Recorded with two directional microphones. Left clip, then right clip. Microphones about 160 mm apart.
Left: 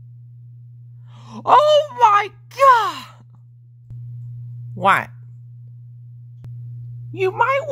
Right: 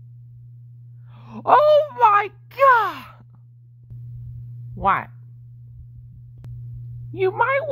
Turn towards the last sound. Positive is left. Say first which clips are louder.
# left 2 dB
turn(degrees=0)  # may be behind; listen again after turning